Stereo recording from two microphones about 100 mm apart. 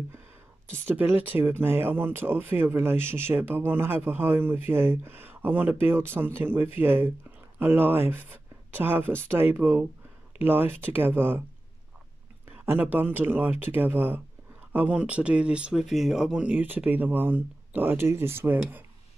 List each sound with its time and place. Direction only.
0.8 s speech: 20° right (ahead or behind)
12.6 s speech: 20° right (ahead or behind)